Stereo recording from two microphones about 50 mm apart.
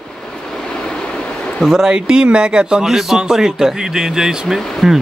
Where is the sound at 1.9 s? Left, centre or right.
Centre.